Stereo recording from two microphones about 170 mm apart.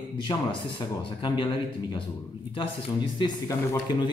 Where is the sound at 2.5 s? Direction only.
30° left (ahead or behind).